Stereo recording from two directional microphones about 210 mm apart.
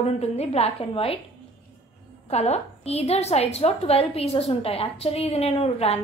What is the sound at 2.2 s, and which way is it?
A woman's voice, 30° left (ahead or behind).